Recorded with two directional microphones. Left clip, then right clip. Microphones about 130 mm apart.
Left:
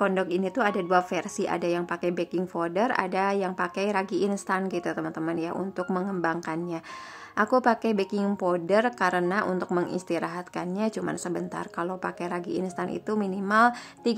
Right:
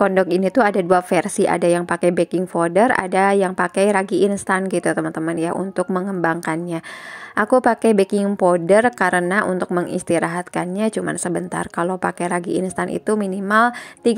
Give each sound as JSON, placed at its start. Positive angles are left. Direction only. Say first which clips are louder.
{"t": 0.0, "sound": "a woman's voice", "louder": "right 9 dB", "side_deg": -45}